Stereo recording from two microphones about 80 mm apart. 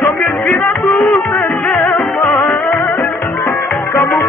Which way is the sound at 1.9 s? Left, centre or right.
Centre.